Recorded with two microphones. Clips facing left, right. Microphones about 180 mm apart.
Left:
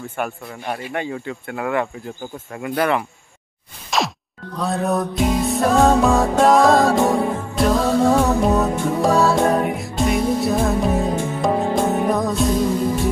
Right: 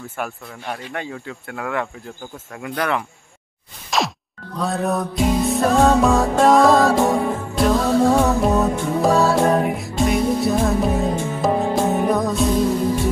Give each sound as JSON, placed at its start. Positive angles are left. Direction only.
{"t": 0.2, "sound": "speech", "side_deg": 10}
{"t": 4.6, "sound": "music", "side_deg": 0}